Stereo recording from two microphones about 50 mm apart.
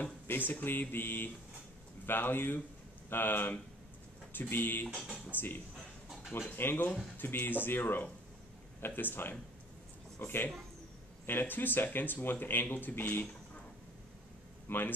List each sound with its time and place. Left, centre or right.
0.3 s speech: left
14.7 s speech: left